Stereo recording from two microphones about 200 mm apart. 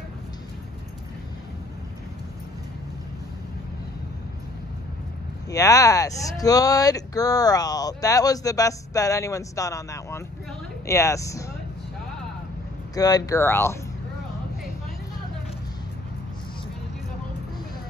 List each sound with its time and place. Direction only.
5.5 s speech: 15° left (ahead or behind)
12.9 s speech: 20° left (ahead or behind)